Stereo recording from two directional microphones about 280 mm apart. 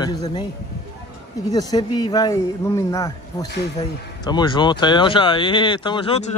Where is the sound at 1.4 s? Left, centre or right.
Centre.